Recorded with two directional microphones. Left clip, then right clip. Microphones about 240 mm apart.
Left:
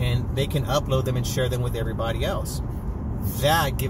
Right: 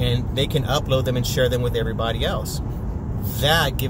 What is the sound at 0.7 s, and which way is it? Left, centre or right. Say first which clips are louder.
Speech: even; centre.